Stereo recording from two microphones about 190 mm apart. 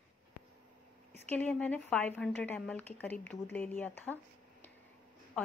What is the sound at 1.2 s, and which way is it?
A woman's voice, 10° left (ahead or behind).